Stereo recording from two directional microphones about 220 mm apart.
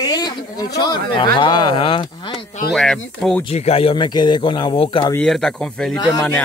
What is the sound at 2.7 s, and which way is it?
Speech, centre (ahead or behind).